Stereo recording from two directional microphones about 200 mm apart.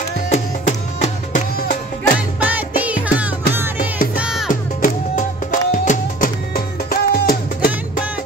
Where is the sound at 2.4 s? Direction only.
5° right (ahead or behind).